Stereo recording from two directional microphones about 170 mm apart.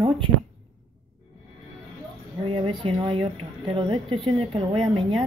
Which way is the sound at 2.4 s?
35° right (ahead or behind).